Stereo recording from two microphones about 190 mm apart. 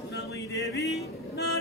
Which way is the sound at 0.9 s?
60° left (ahead or behind).